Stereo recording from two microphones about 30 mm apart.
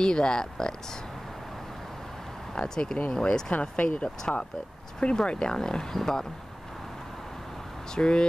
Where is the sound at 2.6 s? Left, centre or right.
Left.